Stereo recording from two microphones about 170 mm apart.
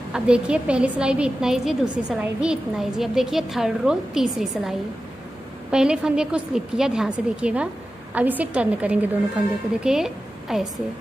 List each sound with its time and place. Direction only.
0.1 s a woman's voice: 5° right (ahead or behind)